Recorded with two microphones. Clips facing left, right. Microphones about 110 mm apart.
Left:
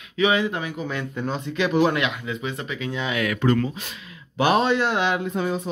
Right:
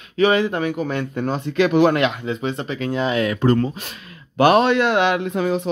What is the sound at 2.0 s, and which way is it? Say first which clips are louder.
Speech: right 6 dB; 35° right (ahead or behind).